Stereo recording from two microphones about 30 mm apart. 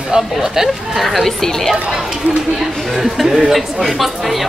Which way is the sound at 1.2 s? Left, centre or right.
Centre.